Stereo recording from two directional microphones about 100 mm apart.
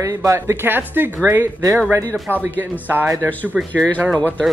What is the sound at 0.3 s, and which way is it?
Speech, 25° right (ahead or behind).